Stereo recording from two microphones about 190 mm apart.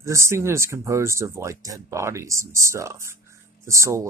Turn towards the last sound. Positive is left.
turn(degrees=-15)  # may be behind; listen again after turning